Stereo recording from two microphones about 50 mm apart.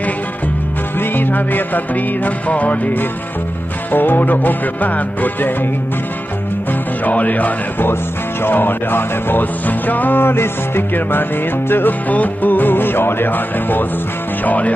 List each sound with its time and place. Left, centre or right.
0.9 s music: left
7.1 s music: left
8.5 s music: left